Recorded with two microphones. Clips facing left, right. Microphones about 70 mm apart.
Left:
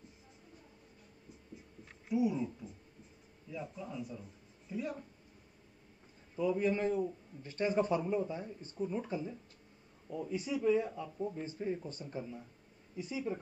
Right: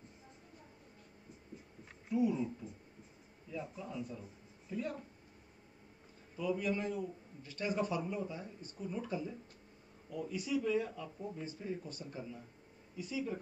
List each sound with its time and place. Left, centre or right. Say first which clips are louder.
2.0 s speech: left 1 dB; centre
6.3 s a man's voice: left 4 dB; left